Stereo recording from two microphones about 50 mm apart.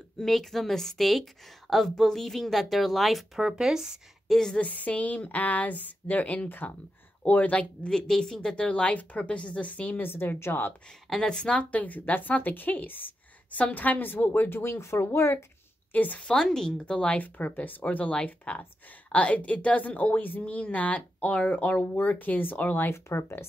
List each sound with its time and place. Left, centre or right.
0.2 s a woman's voice: centre
3.3 s speech: centre
4.6 s a woman's voice: left
7.9 s speech: centre; by 10.1 s left
10.4 s speech: left
11.1 s speech: centre
11.7 s a woman's voice: left
15.9 s a woman's voice: left
16.3 s a woman's voice: centre; by 22.8 s left
22.8 s speech: left